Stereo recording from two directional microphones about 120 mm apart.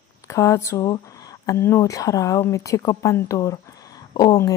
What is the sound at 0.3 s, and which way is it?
Speech, 25° left (ahead or behind).